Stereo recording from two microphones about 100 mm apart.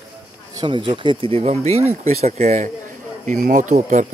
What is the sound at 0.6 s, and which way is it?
Speech, 55° right (ahead or behind).